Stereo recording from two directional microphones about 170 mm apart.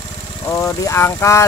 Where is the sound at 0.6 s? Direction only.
15° left (ahead or behind).